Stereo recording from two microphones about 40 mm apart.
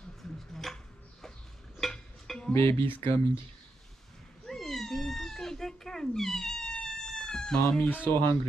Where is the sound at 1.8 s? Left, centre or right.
Centre.